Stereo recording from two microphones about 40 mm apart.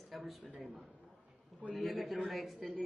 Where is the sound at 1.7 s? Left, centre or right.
Centre.